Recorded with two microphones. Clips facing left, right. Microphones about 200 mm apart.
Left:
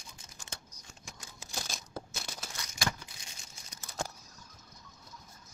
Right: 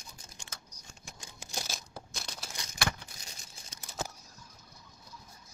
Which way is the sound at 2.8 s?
65° right (ahead or behind).